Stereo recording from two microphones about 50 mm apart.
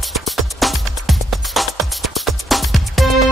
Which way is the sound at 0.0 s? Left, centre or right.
Centre.